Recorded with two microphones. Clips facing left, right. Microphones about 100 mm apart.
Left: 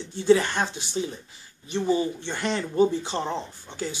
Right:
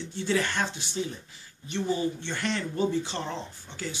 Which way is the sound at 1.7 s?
15° left (ahead or behind).